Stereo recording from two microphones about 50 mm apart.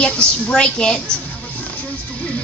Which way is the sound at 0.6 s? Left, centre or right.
Centre.